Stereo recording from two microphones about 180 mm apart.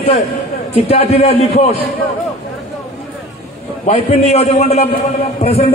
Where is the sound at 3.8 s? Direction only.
35° left (ahead or behind).